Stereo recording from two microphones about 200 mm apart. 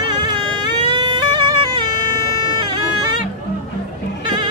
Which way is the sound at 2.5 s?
20° right (ahead or behind).